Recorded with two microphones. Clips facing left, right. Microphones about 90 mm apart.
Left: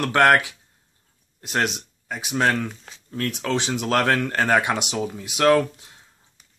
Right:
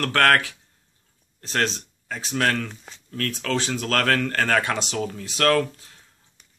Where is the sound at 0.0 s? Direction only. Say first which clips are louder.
Left 2 dB; 20° left (ahead or behind).